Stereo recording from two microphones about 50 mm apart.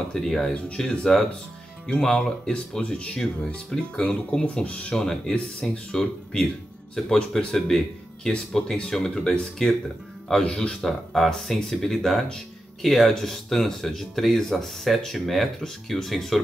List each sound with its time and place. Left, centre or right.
0.1 s speech: centre
10.4 s speech: left
10.7 s speech: centre